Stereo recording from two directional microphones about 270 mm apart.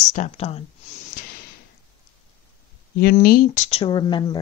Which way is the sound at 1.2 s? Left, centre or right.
Left.